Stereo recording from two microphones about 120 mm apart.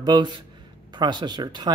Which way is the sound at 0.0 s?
40° right (ahead or behind).